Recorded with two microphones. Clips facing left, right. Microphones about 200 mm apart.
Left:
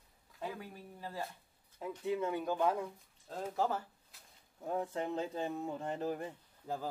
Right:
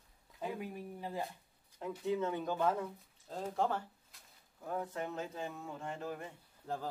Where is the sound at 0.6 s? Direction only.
20° right (ahead or behind).